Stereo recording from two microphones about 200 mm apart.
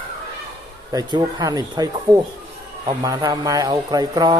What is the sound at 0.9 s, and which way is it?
Speech, 20° right (ahead or behind).